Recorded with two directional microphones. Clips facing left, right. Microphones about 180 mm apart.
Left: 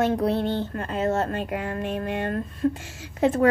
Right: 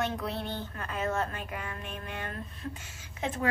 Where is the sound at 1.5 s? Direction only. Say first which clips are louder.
Left 11 dB; 55° left (ahead or behind).